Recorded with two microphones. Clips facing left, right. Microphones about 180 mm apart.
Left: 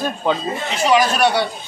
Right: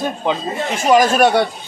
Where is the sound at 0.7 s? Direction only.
50° right (ahead or behind).